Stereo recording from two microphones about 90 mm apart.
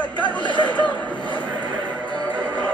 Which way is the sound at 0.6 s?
15° left (ahead or behind).